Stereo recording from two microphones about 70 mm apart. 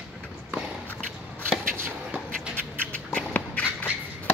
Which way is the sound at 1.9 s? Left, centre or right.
Centre.